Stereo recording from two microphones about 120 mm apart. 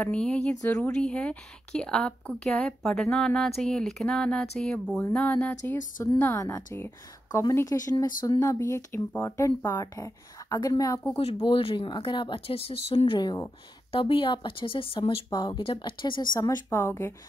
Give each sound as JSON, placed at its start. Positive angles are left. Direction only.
{"t": 0.0, "sound": "speech", "side_deg": 10}
{"t": 11.4, "sound": "speech", "side_deg": 45}
{"t": 13.9, "sound": "speech", "side_deg": 45}
{"t": 16.3, "sound": "speech", "side_deg": 25}